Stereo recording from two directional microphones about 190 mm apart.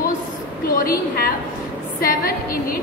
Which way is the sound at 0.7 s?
50° left (ahead or behind).